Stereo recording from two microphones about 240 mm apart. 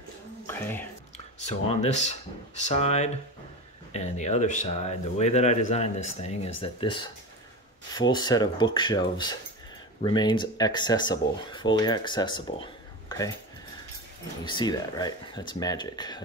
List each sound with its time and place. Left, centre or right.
0.5 s speech: centre
1.1 s speech: left
8.1 s speech: centre
14.4 s speech: centre